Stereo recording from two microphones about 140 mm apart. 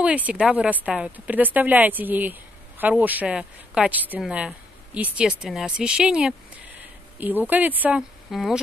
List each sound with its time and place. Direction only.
0.0 s speech: 10° right (ahead or behind)
8.3 s speech: centre (ahead or behind)